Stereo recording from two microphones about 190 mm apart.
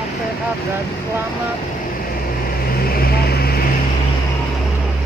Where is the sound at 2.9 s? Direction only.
55° left (ahead or behind).